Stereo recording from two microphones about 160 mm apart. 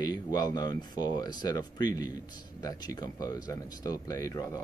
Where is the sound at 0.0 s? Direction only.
25° left (ahead or behind).